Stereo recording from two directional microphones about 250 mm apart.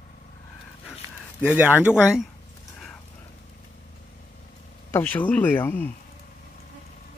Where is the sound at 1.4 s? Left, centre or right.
Centre.